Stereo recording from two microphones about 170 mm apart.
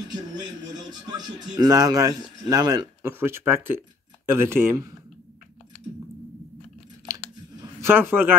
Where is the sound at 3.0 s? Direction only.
15° right (ahead or behind).